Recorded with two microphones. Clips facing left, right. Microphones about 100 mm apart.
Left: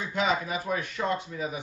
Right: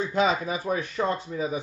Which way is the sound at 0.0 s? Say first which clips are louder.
Right 4 dB; 35° right (ahead or behind).